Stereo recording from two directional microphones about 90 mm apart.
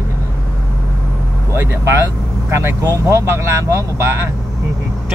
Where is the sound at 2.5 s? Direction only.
30° right (ahead or behind).